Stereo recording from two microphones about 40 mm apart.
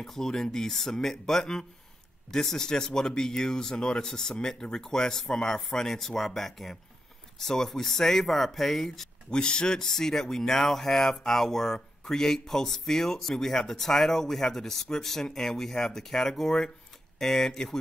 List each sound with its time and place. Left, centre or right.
0.0 s speech: centre
9.3 s speech: centre